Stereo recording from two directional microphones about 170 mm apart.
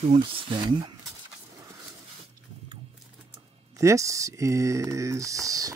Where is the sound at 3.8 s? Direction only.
20° right (ahead or behind).